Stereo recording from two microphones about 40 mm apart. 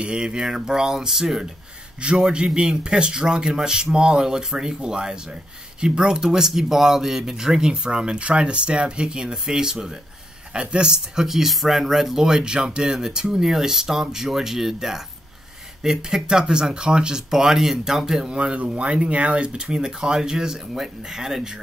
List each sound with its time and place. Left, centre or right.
0.0 s speech: right
2.0 s a man's voice: right
11.2 s speech: centre